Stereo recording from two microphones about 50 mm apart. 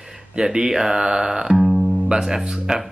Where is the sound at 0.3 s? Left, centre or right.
Centre.